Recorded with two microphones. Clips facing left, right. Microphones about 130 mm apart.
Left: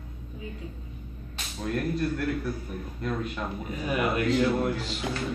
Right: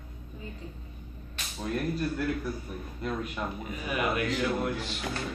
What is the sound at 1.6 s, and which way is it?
A man's voice, 5° right (ahead or behind).